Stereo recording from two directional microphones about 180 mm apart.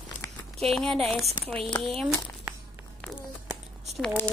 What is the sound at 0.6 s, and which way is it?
Speech, centre (ahead or behind).